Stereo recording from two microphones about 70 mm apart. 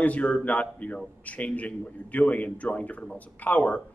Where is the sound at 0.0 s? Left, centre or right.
Centre.